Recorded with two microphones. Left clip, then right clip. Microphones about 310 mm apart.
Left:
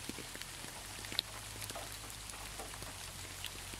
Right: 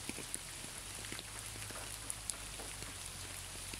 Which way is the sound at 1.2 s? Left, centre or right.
Left.